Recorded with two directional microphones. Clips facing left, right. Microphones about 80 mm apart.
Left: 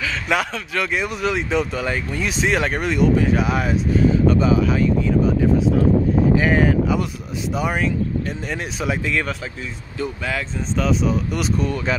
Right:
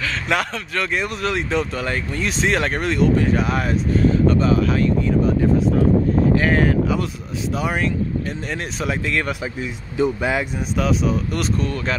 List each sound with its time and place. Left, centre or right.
0.0 s speech: centre
9.4 s speech: centre
10.8 s speech: centre